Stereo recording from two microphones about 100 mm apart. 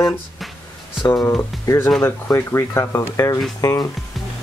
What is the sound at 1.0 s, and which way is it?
Speech, 30° left (ahead or behind).